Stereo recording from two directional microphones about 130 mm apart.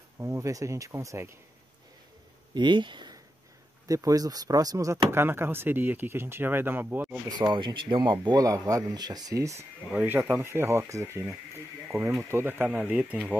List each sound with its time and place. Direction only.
0.2 s speech: 25° right (ahead or behind)
2.5 s speech: 35° right (ahead or behind)
3.8 s speech: 25° right (ahead or behind)
7.2 s speech: 30° right (ahead or behind)
9.8 s speech: 15° right (ahead or behind)